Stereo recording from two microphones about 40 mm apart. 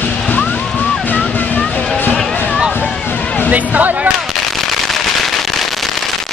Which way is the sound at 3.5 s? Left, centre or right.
Right.